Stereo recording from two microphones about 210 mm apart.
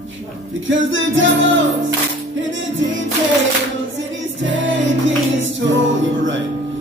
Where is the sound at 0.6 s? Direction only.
65° right (ahead or behind).